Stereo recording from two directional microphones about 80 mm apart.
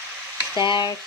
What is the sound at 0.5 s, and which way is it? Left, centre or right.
Speech, left.